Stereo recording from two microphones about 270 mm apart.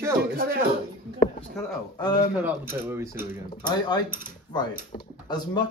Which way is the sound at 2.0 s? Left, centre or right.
Centre.